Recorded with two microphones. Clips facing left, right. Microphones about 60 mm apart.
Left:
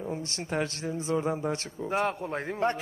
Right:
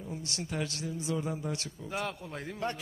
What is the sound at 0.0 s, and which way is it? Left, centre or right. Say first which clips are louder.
A woman's voice: left 5 dB; left.